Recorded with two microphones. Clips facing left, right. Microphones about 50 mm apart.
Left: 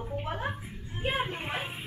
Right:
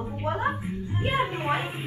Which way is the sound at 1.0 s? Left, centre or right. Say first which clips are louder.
Right 4 dB; centre.